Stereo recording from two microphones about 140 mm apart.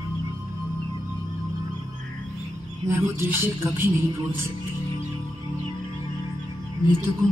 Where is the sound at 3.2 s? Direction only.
15° right (ahead or behind).